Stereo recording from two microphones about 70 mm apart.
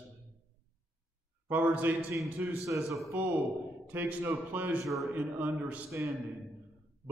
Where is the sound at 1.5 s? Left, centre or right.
Right.